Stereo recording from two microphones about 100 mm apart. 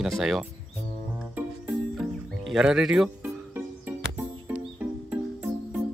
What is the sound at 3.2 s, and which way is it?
Music, 20° right (ahead or behind).